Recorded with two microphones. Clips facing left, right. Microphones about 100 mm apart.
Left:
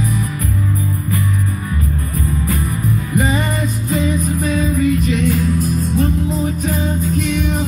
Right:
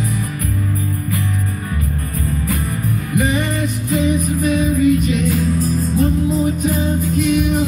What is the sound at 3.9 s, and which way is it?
Music, 30° left (ahead or behind).